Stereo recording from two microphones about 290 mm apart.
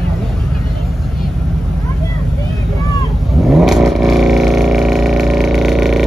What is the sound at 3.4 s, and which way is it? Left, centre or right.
Vehicle, centre.